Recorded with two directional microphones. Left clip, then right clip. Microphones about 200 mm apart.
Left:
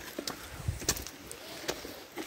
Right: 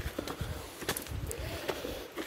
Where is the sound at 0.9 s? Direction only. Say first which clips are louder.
Left 2 dB; 60° left (ahead or behind).